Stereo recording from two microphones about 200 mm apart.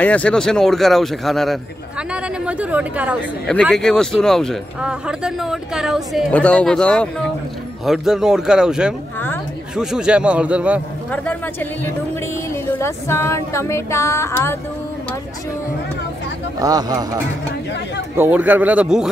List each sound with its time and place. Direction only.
0.0 s a man's voice: 5° left (ahead or behind)
12.7 s a sound: 10° left (ahead or behind)
16.5 s a man's voice: 20° right (ahead or behind)